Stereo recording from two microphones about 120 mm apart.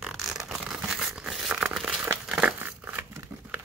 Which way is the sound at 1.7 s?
Centre (ahead or behind).